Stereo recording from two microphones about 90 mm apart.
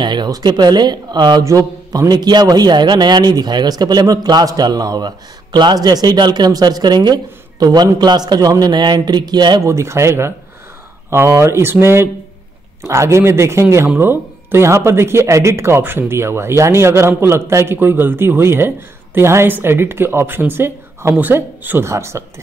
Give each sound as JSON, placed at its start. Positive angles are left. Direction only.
{"t": 0.0, "sound": "a man's voice", "side_deg": -55}
{"t": 1.4, "sound": "a man's voice", "side_deg": -40}
{"t": 9.6, "sound": "a man's voice", "side_deg": -35}